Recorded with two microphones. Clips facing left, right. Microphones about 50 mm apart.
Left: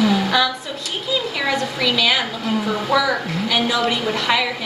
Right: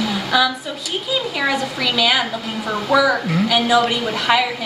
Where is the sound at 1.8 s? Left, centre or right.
Centre.